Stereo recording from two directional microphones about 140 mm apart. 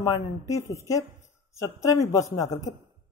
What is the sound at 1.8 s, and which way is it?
Speech, 25° left (ahead or behind).